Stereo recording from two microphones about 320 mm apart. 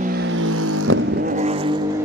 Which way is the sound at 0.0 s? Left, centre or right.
Right.